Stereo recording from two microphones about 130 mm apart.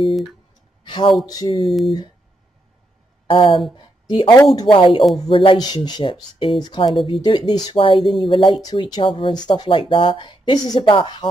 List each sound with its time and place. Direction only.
0.0 s speech: centre (ahead or behind)
0.8 s speech: 40° left (ahead or behind)
1.7 s speech: centre (ahead or behind)
3.3 s speech: 45° left (ahead or behind)
8.0 s speech: centre (ahead or behind)
8.3 s speech: 40° left (ahead or behind)